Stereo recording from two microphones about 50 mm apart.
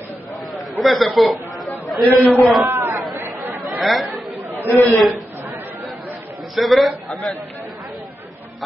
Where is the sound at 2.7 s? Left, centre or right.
Right.